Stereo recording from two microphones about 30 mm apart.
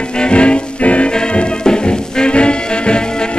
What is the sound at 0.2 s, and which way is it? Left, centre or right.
Music, left.